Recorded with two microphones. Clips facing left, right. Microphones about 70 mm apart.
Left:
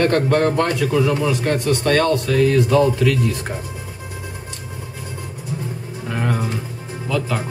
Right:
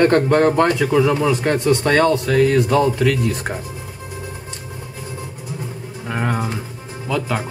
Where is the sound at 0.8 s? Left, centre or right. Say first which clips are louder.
Right 2 dB; right.